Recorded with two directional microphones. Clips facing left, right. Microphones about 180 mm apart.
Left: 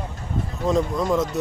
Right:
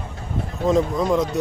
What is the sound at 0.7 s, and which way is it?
Speech, centre (ahead or behind).